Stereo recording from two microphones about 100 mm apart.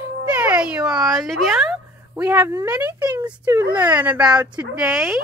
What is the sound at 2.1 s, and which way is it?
Speech, 15° right (ahead or behind).